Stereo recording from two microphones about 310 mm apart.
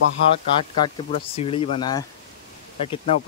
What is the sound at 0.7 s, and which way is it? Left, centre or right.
Speech, centre.